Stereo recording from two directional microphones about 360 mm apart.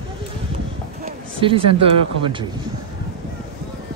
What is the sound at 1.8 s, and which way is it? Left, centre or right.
Speech, centre.